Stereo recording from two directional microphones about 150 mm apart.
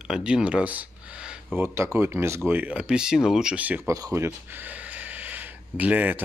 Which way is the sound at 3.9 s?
20° right (ahead or behind).